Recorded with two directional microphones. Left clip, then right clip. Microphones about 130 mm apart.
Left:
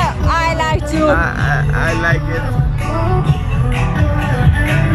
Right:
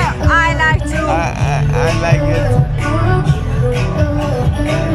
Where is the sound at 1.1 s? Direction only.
20° right (ahead or behind).